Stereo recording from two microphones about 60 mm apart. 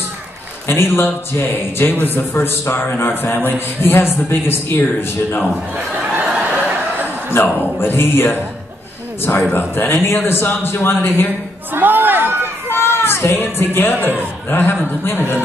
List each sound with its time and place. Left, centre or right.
0.7 s a man's voice: left
6.1 s a sound: right
7.8 s a man's voice: left
9.5 s a man's voice: left
11.7 s chatter: right
12.6 s a man's voice: left